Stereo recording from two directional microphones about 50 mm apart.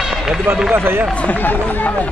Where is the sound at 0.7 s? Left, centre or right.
Right.